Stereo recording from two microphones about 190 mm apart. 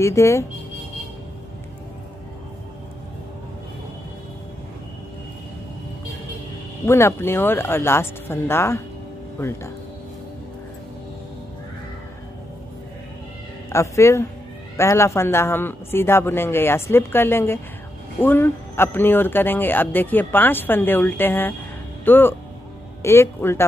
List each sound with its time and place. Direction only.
0.0 s speech: 15° left (ahead or behind)
6.9 s speech: 15° left (ahead or behind)
13.7 s speech: 15° left (ahead or behind)